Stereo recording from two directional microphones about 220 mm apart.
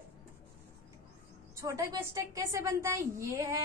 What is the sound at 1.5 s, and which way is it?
A woman's voice, 15° right (ahead or behind).